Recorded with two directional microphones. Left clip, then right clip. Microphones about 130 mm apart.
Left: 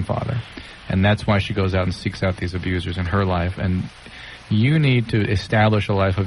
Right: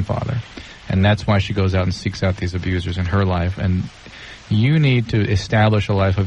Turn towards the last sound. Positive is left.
turn(degrees=30)  # may be behind; listen again after turning